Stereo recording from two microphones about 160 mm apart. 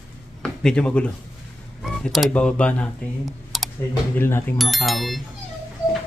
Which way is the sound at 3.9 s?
15° left (ahead or behind).